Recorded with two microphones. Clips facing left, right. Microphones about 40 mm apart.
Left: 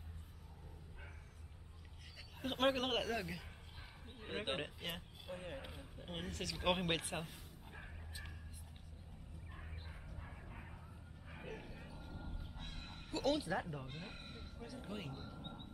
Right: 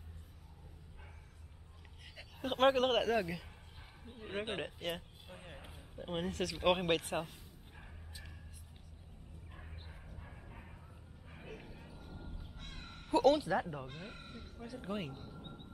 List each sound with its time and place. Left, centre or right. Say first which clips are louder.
2.1 s speech: right 6 dB; centre
3.0 s speech: right 7 dB; centre
4.0 s bow-wow: right 4 dB; centre
4.6 s speech: right 4 dB; centre
9.5 s a sound: even; centre
10.1 s bow-wow: even; centre
11.4 s vehicle: even; centre
12.2 s crow: even; centre
13.2 s speech: right 7 dB; centre
13.8 s a sound: right 2 dB; centre
14.8 s speech: right 7 dB; centre
15.3 s a sound: even; centre